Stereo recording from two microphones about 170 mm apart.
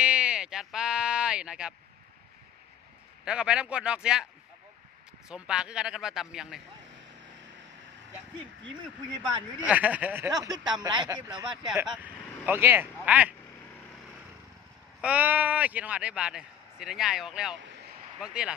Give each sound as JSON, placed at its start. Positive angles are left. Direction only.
{"t": 0.0, "sound": "a sound", "side_deg": -5}
{"t": 3.3, "sound": "a man's voice", "side_deg": -5}
{"t": 5.3, "sound": "a man's voice", "side_deg": -5}
{"t": 9.7, "sound": "speech", "side_deg": -10}
{"t": 10.3, "sound": "speech", "side_deg": -25}
{"t": 11.6, "sound": "speech", "side_deg": -5}
{"t": 15.0, "sound": "a man's voice", "side_deg": -10}